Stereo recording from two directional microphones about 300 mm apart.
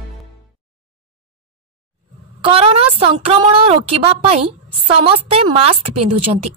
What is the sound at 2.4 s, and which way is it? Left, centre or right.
A woman's voice, centre.